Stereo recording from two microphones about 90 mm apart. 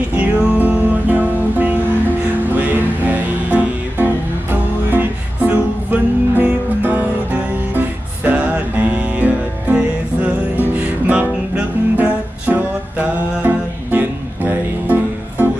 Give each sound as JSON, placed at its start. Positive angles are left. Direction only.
{"t": 0.1, "sound": "music", "side_deg": -15}